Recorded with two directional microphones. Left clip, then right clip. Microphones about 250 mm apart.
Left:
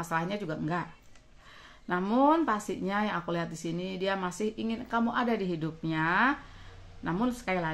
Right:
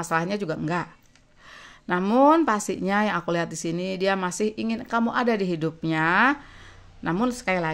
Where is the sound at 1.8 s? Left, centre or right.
Right.